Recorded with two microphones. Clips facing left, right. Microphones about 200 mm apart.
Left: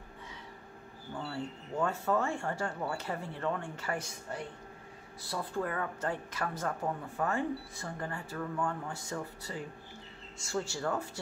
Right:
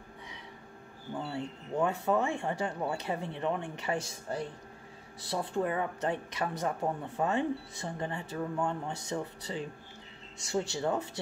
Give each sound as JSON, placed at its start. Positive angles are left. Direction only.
{"t": 1.2, "sound": "speech", "side_deg": -20}